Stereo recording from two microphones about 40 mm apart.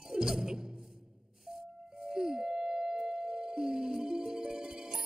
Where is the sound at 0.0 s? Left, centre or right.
Centre.